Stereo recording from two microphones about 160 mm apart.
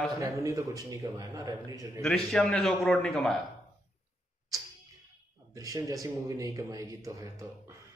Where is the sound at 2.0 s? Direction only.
5° left (ahead or behind).